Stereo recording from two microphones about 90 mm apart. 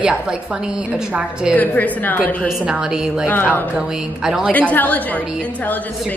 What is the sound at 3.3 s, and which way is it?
Speech, 20° left (ahead or behind).